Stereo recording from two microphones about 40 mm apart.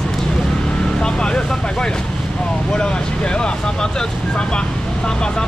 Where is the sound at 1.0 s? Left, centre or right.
Left.